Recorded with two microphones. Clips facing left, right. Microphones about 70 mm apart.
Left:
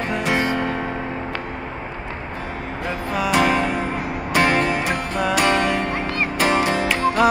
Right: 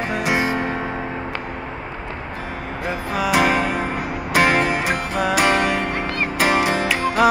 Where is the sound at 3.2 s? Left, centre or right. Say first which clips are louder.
Even; centre.